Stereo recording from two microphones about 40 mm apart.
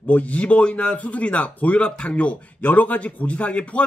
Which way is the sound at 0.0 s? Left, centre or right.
Left.